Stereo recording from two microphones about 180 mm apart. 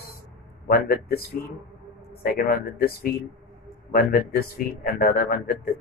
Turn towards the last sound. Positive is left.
turn(degrees=55)  # may be behind; listen again after turning